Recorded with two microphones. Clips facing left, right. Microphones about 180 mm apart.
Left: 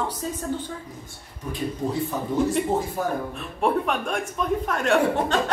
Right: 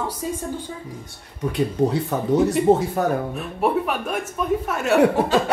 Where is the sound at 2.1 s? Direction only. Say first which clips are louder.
Right 3 dB; 75° right (ahead or behind).